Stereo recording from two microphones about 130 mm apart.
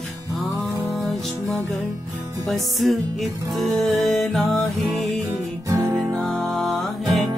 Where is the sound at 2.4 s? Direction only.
Centre (ahead or behind).